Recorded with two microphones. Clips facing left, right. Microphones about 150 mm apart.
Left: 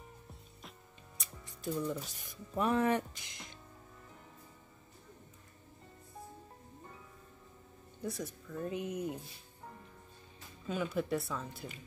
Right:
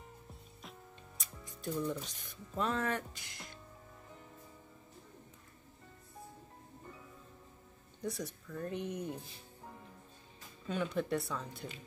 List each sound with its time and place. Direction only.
0.3 s music: centre (ahead or behind)
2.5 s speech: 15° left (ahead or behind)
8.0 s speech: centre (ahead or behind)
10.7 s speech: 5° left (ahead or behind)